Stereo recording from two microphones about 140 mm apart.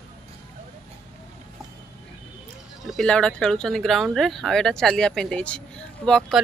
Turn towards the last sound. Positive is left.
turn(degrees=5)  # may be behind; listen again after turning